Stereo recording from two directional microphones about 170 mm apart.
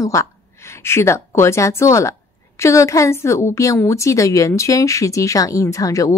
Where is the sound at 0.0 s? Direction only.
20° left (ahead or behind).